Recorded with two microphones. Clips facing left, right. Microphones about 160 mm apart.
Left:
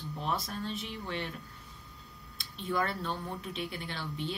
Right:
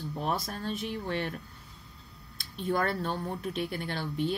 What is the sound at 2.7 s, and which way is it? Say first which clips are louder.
Speech: right 3 dB; 45° right (ahead or behind).